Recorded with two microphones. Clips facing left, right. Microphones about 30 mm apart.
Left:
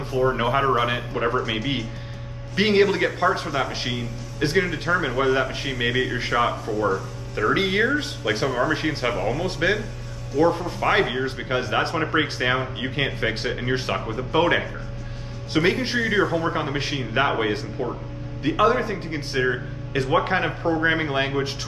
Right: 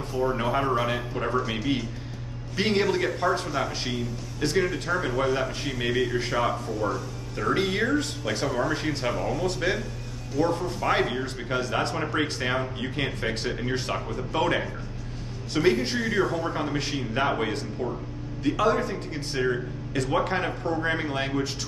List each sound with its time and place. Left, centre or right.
0.2 s speech: left
1.3 s a man's voice: centre
2.5 s speech: left